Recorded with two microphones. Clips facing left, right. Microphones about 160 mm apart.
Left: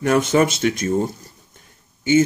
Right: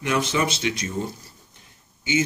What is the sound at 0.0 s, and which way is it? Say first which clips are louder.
Speech: left 7 dB; 50° left (ahead or behind).